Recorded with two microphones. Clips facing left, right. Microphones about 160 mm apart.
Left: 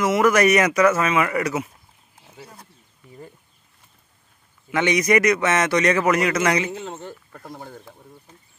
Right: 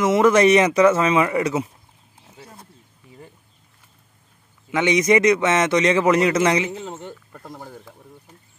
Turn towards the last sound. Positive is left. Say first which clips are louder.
# even
turn(degrees=0)  # may be behind; listen again after turning